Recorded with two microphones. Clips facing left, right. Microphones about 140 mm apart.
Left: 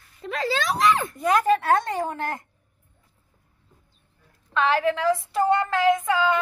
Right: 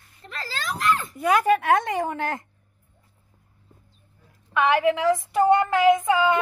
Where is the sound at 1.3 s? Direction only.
10° right (ahead or behind).